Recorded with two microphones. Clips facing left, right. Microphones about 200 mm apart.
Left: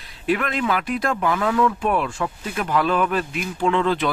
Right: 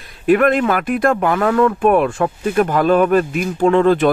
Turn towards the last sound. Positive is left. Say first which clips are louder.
# right 8 dB
turn(degrees=-45)  # may be behind; listen again after turning